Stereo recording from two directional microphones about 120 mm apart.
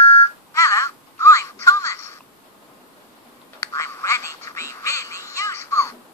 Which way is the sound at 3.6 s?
25° left (ahead or behind).